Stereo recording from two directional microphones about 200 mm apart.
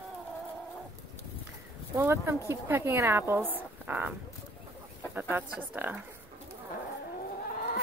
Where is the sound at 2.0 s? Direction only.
15° right (ahead or behind).